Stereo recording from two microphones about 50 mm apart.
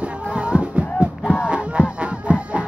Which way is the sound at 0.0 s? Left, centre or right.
Right.